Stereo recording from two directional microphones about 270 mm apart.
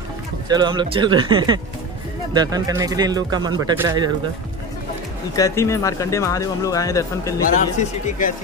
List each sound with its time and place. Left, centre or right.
0.5 s speech: centre
5.3 s speech: centre
7.5 s a man's voice: left